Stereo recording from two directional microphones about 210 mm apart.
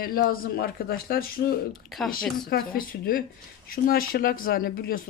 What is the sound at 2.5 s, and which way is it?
Speech, 45° left (ahead or behind).